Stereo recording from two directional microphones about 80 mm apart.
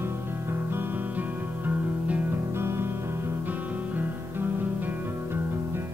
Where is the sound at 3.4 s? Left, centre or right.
Right.